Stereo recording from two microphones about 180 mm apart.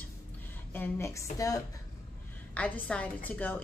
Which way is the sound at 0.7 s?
15° left (ahead or behind).